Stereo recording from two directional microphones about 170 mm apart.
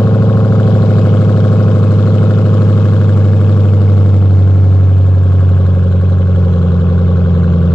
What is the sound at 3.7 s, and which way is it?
Vehicle, 20° left (ahead or behind).